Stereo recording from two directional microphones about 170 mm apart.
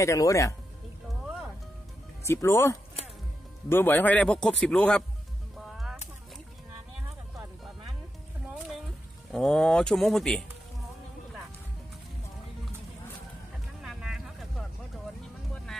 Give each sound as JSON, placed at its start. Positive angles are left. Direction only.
{"t": 0.0, "sound": "speech", "side_deg": 20}
{"t": 2.2, "sound": "speech", "side_deg": 15}
{"t": 9.3, "sound": "speech", "side_deg": 5}
{"t": 13.8, "sound": "vehicle", "side_deg": -5}